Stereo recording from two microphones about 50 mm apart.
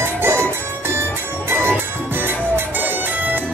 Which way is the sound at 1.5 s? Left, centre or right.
Right.